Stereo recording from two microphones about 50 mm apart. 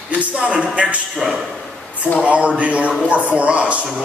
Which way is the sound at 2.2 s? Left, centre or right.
Right.